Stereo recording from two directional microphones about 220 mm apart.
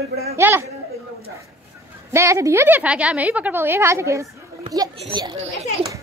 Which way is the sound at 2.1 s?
15° right (ahead or behind).